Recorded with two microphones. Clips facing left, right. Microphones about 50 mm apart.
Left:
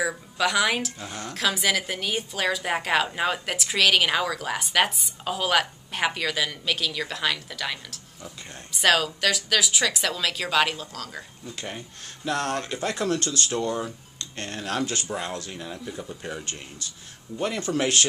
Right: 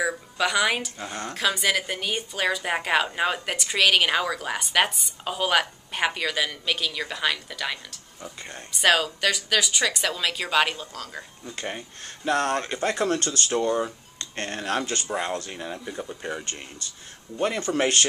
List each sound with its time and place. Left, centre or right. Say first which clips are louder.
0.0 s speech: even; centre; by 13.3 s right
13.4 s speech: right 3 dB; centre
14.3 s speech: right 3 dB; right
17.7 s speech: even; centre